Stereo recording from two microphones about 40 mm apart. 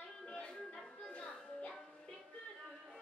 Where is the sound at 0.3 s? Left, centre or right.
Left.